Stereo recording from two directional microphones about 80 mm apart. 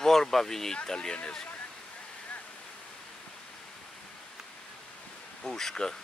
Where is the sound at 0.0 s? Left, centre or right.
Centre.